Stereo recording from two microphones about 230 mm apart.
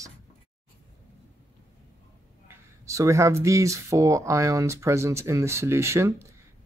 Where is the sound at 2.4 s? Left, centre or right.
Centre.